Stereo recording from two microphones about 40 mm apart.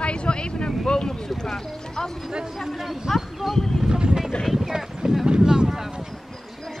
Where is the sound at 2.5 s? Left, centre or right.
Centre.